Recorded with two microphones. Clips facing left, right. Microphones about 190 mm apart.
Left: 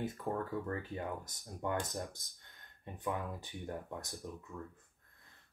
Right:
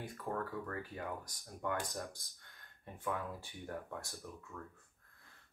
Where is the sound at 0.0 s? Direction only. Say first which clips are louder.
Left 3 dB; 25° left (ahead or behind).